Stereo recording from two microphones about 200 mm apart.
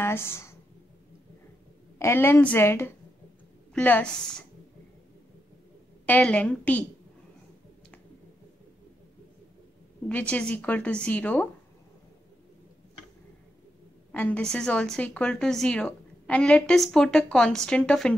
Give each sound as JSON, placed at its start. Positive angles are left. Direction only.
{"t": 0.0, "sound": "speech", "side_deg": 10}
{"t": 2.0, "sound": "a woman's voice", "side_deg": 10}
{"t": 6.0, "sound": "a woman's voice", "side_deg": 5}
{"t": 10.0, "sound": "a woman's voice", "side_deg": 5}
{"t": 14.1, "sound": "a woman's voice", "side_deg": 10}